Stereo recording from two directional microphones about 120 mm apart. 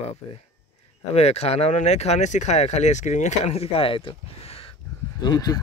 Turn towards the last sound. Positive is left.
turn(degrees=35)  # may be behind; listen again after turning